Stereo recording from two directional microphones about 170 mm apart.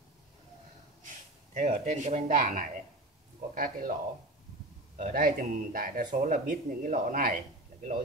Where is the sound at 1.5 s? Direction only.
45° right (ahead or behind).